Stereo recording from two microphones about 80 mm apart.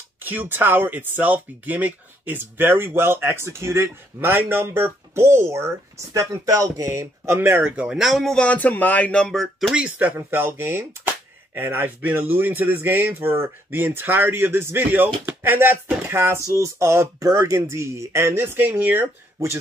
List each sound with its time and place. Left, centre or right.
0.2 s speech: right
7.7 s speech: centre
8.0 s speech: centre
8.4 s speech: centre
9.8 s speech: right